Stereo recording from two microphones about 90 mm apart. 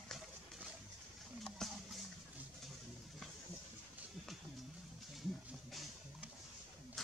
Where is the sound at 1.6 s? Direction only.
5° left (ahead or behind).